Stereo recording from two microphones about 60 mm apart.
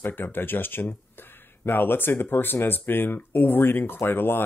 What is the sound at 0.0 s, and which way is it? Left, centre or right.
Speech, left.